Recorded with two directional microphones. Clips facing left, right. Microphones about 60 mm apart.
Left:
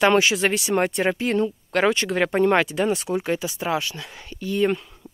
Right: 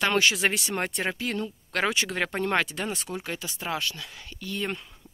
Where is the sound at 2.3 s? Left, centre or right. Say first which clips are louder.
Left 10 dB; centre.